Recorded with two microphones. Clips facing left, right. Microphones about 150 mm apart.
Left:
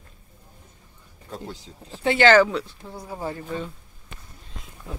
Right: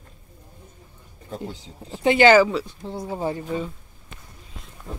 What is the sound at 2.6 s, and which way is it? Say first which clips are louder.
Speech: right 7 dB; 25° right (ahead or behind).